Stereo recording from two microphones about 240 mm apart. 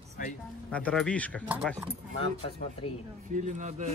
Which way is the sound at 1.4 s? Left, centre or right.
Centre.